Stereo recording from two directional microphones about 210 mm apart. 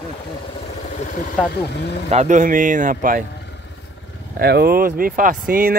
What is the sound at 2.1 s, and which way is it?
Speech, 35° right (ahead or behind).